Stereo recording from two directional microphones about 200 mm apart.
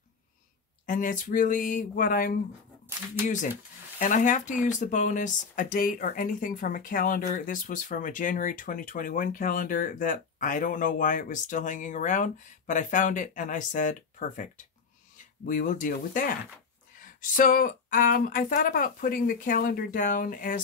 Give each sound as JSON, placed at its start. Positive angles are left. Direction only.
{"t": 0.8, "sound": "speech", "side_deg": 40}
{"t": 4.0, "sound": "speech", "side_deg": 40}